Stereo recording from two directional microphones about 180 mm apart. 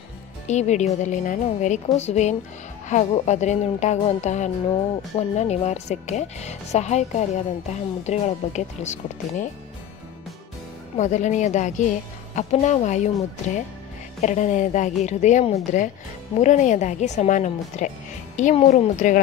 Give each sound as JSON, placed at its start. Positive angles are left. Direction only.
{"t": 0.5, "sound": "speech", "side_deg": 40}
{"t": 11.0, "sound": "speech", "side_deg": 40}